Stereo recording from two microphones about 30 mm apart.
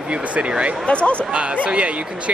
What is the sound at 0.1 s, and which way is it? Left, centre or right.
Speech, right.